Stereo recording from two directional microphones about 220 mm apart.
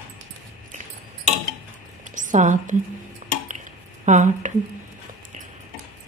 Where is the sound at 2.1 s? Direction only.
35° right (ahead or behind).